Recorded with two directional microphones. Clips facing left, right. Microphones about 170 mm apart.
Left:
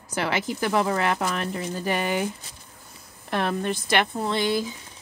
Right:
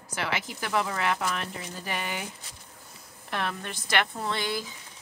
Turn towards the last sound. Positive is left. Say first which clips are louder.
# left 7 dB
turn(degrees=20)  # may be behind; listen again after turning